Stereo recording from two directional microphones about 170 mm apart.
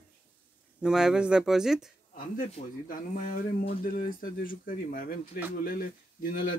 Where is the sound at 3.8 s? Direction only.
55° left (ahead or behind).